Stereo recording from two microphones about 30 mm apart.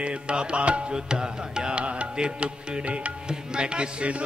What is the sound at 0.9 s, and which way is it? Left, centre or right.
Music, right.